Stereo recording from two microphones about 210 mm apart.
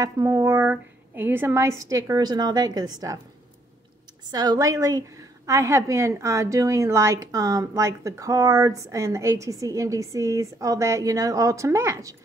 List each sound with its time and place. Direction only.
0.0 s a woman's voice: 15° right (ahead or behind)
4.3 s a woman's voice: 20° right (ahead or behind)